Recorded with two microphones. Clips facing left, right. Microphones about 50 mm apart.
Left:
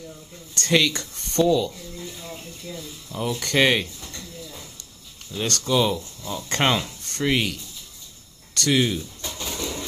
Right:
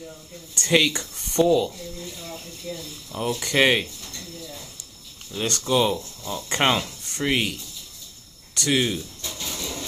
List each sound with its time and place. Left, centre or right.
0.6 s speech: centre
2.2 s speech: centre
3.3 s speech: centre
5.3 s speech: centre
7.1 s wood: centre
8.5 s speech: centre